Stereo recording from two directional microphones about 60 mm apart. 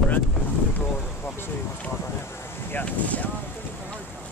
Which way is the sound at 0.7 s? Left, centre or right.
Left.